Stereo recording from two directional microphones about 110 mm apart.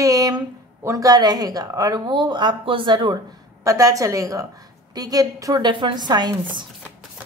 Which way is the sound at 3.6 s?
30° right (ahead or behind).